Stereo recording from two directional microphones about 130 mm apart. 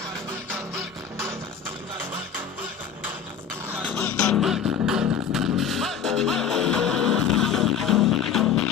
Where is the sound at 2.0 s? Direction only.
15° right (ahead or behind).